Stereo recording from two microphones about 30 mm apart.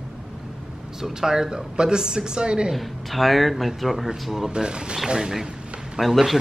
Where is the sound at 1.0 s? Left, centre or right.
Centre.